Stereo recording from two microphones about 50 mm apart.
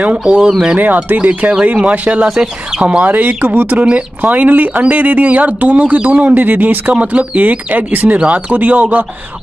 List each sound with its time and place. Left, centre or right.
0.2 s speech: centre
0.7 s speech: right
3.1 s speech: right
8.2 s speech: centre